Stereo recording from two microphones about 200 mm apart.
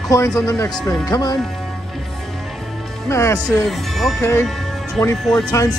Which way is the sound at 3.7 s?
Centre (ahead or behind).